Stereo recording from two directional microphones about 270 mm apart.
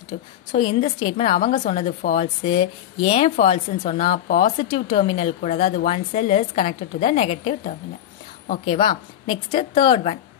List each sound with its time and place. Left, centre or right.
0.1 s a woman's voice: left
2.4 s a woman's voice: centre
4.6 s a woman's voice: centre
9.3 s a woman's voice: centre